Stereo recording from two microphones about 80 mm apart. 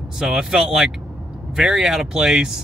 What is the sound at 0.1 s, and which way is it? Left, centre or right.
Speech, centre.